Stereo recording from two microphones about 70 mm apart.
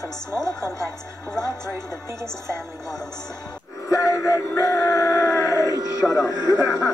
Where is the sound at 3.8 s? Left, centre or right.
Left.